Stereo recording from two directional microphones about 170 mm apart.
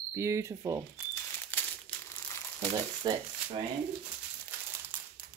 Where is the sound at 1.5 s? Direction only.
10° left (ahead or behind).